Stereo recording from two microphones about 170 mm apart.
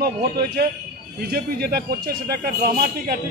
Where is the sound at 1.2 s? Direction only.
65° right (ahead or behind).